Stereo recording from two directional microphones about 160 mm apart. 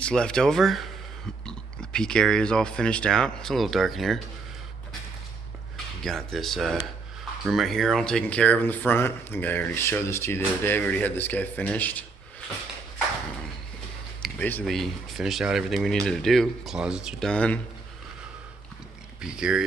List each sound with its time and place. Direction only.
0.0 s speech: 5° left (ahead or behind)
6.0 s speech: centre (ahead or behind)
14.2 s speech: 10° left (ahead or behind)
19.2 s speech: 5° right (ahead or behind)